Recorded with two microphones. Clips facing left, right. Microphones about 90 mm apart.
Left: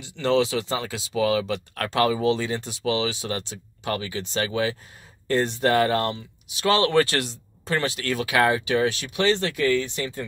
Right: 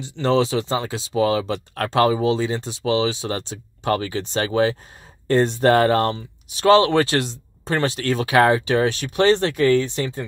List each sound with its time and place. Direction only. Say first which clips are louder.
0.0 s speech: right 2 dB; 30° right (ahead or behind)
6.8 s speech: right 2 dB; 20° right (ahead or behind)